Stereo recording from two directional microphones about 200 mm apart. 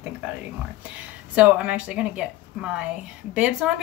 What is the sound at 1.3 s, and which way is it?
Speech, 5° right (ahead or behind).